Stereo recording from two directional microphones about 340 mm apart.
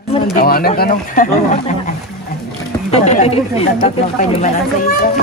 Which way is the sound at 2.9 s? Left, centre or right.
Centre.